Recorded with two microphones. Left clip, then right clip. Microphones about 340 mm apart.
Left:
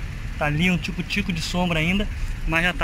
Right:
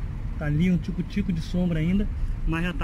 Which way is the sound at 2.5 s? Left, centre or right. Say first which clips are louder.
Left 9 dB; centre.